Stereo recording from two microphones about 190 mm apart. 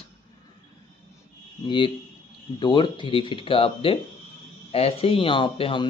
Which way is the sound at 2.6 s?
25° left (ahead or behind).